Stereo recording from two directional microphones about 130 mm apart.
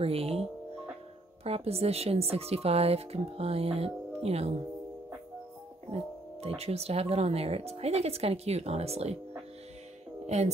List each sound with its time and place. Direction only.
0.0 s speech: 50° right (ahead or behind)
6.4 s speech: 55° right (ahead or behind)
10.2 s speech: 60° right (ahead or behind)